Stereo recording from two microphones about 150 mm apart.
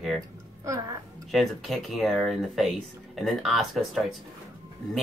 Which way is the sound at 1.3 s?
Centre (ahead or behind).